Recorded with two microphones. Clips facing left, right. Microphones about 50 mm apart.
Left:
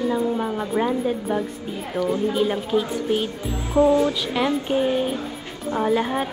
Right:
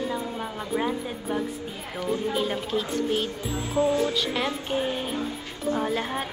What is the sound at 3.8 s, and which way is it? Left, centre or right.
Speech, left.